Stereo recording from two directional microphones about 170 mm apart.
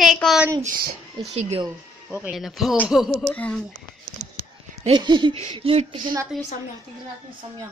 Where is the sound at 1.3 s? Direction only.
40° right (ahead or behind).